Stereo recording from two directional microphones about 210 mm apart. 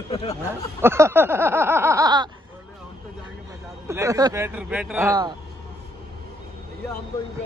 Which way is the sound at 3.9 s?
15° right (ahead or behind).